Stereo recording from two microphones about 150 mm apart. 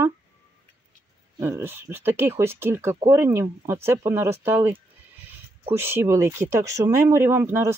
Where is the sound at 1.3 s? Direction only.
15° right (ahead or behind).